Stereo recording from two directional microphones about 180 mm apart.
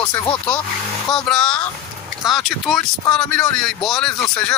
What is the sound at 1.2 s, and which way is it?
Speech, 5° left (ahead or behind).